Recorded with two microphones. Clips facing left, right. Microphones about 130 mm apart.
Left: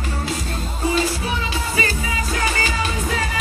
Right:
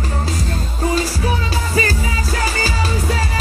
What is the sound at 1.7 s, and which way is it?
Music, 40° right (ahead or behind).